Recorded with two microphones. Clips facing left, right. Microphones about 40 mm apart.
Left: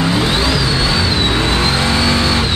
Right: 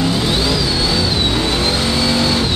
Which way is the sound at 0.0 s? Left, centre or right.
Left.